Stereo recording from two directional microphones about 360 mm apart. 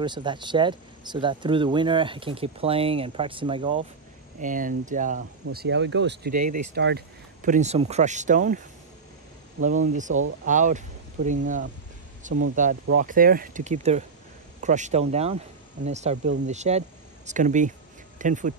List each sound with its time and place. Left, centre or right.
0.0 s speech: centre